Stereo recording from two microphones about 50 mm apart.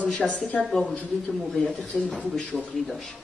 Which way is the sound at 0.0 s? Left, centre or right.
Left.